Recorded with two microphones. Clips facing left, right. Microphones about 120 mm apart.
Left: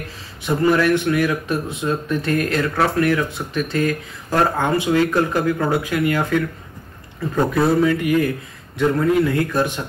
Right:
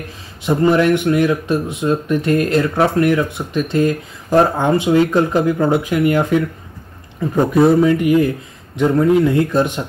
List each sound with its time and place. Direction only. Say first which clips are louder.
0.4 s speech: right 3 dB; 25° right (ahead or behind)